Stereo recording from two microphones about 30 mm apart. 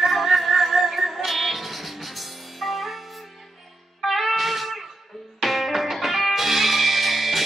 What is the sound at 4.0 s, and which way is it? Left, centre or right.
Music, centre.